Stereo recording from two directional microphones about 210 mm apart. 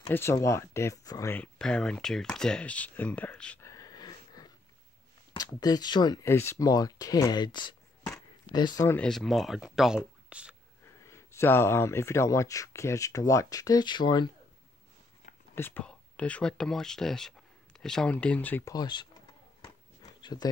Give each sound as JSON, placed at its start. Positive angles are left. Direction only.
{"t": 0.1, "sound": "speech", "side_deg": 10}
{"t": 5.6, "sound": "speech", "side_deg": 20}
{"t": 11.0, "sound": "speech", "side_deg": 15}
{"t": 15.5, "sound": "speech", "side_deg": 10}
{"t": 20.0, "sound": "a sound", "side_deg": 20}